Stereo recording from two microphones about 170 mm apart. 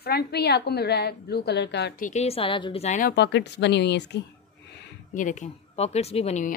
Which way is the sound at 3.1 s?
90° left.